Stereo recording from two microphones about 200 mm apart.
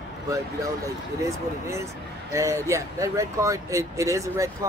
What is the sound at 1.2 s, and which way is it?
Speech, 15° right (ahead or behind).